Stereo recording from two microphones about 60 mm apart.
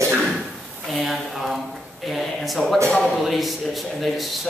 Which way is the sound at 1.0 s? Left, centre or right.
Centre.